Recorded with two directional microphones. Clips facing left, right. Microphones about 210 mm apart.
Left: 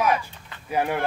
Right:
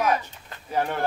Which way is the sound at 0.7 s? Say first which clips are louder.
Left 2 dB; 10° left (ahead or behind).